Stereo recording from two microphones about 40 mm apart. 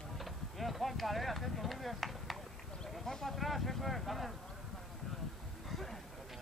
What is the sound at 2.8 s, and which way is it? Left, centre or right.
Speech, centre.